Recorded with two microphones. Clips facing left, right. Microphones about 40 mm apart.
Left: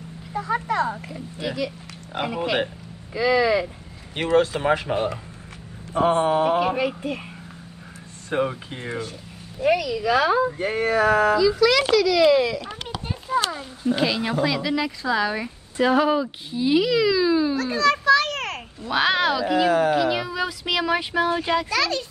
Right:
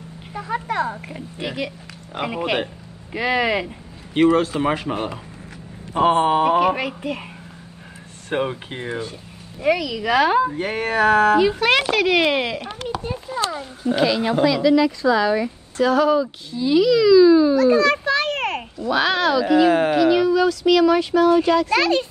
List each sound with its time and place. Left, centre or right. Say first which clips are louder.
0.3 s speech: left 1 dB; right
5.9 s speech: right 3 dB; right
8.3 s speech: right 1 dB; right
9.6 s speech: right 1 dB; right
14.6 s a child's voice: right 9 dB; centre
15.8 s a child's voice: right 2 dB; left
17.6 s a child's voice: right 5 dB; right
18.9 s a child's voice: right 2 dB; centre
19.5 s speech: right 4 dB; right
20.1 s a child's voice: right 8 dB; centre
21.6 s speech: right 5 dB; right